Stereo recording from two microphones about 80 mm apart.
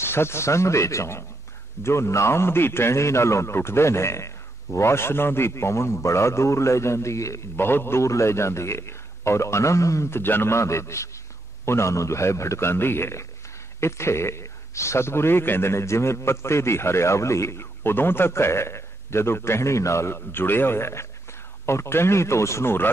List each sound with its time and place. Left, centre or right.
0.0 s a man's voice: left
7.5 s a man's voice: left